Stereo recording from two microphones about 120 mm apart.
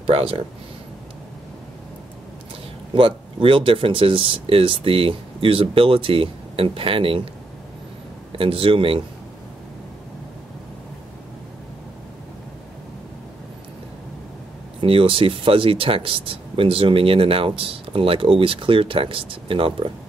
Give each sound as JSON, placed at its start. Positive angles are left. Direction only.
{"t": 0.0, "sound": "speech", "side_deg": -50}
{"t": 2.9, "sound": "speech", "side_deg": -45}
{"t": 8.3, "sound": "speech", "side_deg": -50}
{"t": 14.8, "sound": "speech", "side_deg": -50}